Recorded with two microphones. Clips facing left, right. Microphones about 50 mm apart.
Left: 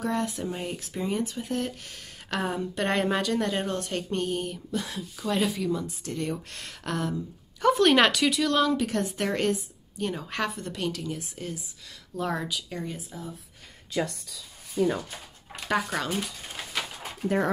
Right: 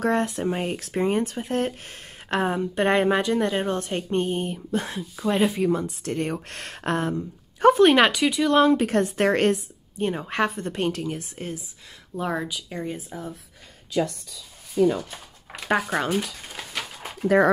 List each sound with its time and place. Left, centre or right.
0.0 s a woman's voice: right
5.7 s speech: right
7.8 s speech: centre
8.5 s speech: right
9.9 s speech: right
12.2 s speech: centre
13.1 s speech: right
15.9 s a woman's voice: right